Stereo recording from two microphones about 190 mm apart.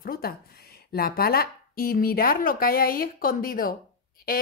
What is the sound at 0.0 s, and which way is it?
Speech, 50° left (ahead or behind).